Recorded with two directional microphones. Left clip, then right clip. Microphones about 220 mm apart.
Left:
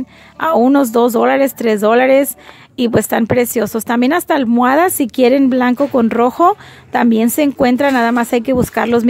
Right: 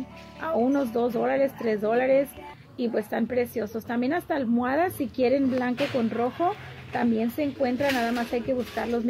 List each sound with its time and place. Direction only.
0.4 s a woman's voice: 40° left (ahead or behind)